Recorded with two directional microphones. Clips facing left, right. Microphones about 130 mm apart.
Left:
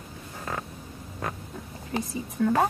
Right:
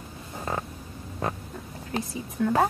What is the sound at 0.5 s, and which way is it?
Frog, 25° right (ahead or behind).